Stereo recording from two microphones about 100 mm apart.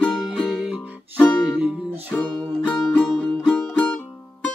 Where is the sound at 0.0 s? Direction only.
Centre (ahead or behind).